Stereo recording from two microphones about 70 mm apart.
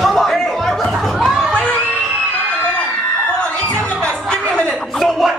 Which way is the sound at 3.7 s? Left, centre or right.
Centre.